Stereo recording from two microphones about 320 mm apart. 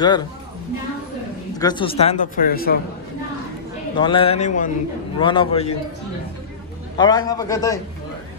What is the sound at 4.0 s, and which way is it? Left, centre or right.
A man's voice, centre.